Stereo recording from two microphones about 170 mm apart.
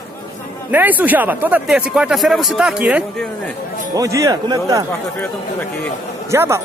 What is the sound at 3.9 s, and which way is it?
Speech, 20° right (ahead or behind).